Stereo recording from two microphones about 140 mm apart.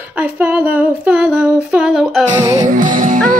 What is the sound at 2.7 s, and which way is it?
Music, 70° right (ahead or behind).